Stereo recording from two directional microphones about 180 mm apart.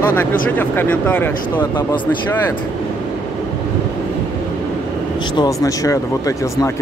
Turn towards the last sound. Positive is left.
turn(degrees=20)  # may be behind; listen again after turning